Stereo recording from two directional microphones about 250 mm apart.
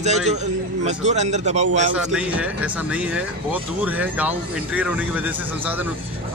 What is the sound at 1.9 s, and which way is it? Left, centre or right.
Speech, centre.